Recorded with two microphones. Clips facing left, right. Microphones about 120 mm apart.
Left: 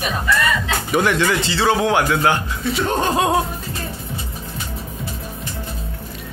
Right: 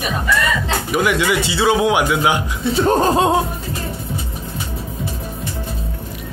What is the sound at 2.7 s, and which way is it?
Speech, 35° right (ahead or behind).